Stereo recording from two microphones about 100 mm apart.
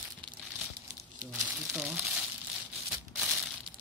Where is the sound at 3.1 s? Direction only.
5° right (ahead or behind).